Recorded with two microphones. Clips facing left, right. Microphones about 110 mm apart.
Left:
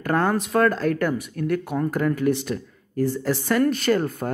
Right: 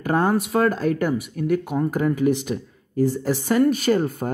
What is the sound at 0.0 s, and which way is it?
Speech, 15° right (ahead or behind).